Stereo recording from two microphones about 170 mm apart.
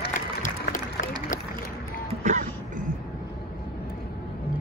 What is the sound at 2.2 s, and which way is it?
Throat clearing, 45° right (ahead or behind).